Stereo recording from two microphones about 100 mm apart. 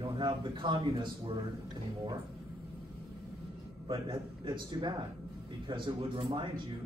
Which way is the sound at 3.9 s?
60° right (ahead or behind).